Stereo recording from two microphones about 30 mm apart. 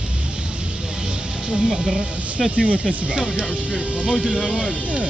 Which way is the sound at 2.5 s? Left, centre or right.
Right.